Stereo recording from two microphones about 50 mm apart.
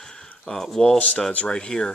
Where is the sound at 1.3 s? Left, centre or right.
Left.